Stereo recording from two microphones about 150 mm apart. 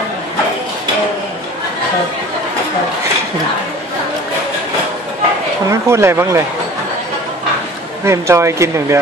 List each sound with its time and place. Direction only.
5.7 s speech: 20° right (ahead or behind)
8.0 s speech: 20° right (ahead or behind)